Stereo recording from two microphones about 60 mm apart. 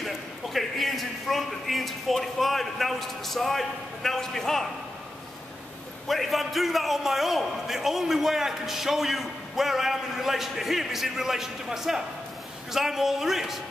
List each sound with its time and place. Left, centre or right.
0.0 s a man's voice: centre
6.0 s a man's voice: centre